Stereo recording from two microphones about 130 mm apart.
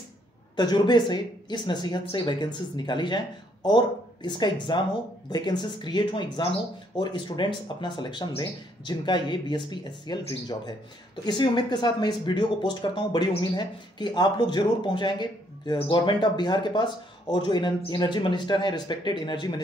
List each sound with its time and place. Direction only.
0.6 s speech: 35° left (ahead or behind)
11.2 s speech: 35° left (ahead or behind)